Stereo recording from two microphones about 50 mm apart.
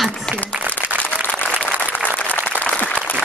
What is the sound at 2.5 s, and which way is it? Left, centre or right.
Applause, right.